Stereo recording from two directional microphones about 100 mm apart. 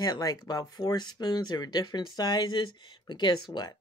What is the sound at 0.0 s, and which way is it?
Speech, 40° left (ahead or behind).